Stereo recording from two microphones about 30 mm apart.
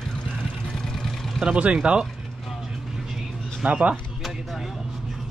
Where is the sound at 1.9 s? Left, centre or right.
Right.